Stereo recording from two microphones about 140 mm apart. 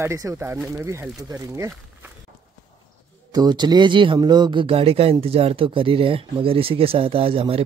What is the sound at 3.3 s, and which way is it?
Speech, 30° right (ahead or behind).